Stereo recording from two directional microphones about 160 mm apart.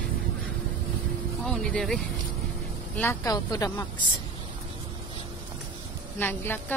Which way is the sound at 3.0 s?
15° left (ahead or behind).